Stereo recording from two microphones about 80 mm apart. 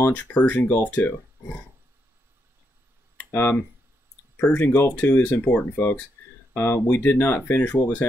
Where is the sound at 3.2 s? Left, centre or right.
Left.